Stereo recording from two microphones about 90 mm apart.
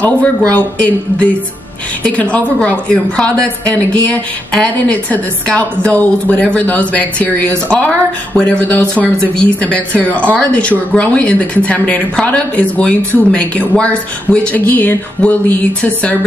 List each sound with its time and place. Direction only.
0.0 s speech: 15° left (ahead or behind)